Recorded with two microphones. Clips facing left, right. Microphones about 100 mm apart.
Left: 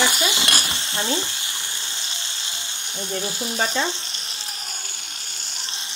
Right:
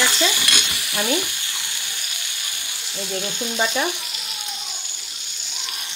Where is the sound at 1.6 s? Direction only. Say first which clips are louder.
Left 1 dB; 20° left (ahead or behind).